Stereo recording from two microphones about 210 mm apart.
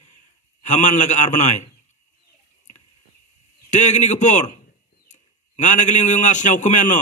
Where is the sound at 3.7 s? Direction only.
35° left (ahead or behind).